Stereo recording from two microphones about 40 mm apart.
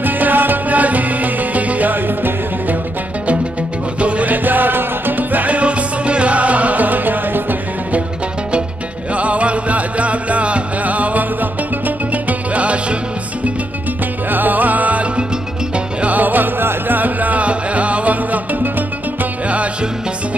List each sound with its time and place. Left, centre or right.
0.0 s music: right
4.0 s music: right
4.5 s music: right
9.1 s music: right
14.3 s music: right